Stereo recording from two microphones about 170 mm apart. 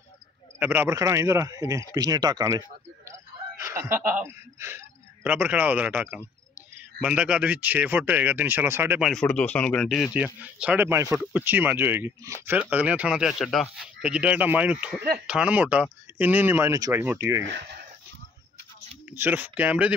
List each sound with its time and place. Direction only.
0.6 s speech: 10° right (ahead or behind)
9.0 s speech: 5° left (ahead or behind)
10.1 s speech: 10° right (ahead or behind)
17.5 s speech: 90° right
19.0 s speech: 10° right (ahead or behind)